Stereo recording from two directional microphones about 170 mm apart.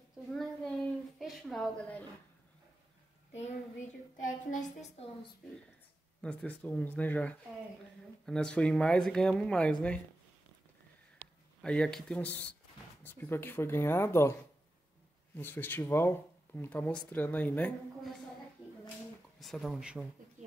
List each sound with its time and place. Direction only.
0.3 s child singing: 5° left (ahead or behind)
1.2 s a woman's voice: centre (ahead or behind)
4.2 s a woman's voice: 50° left (ahead or behind)
6.2 s speech: 5° left (ahead or behind)
11.6 s speech: 5° left (ahead or behind)
15.3 s speech: 10° left (ahead or behind)
19.4 s speech: centre (ahead or behind)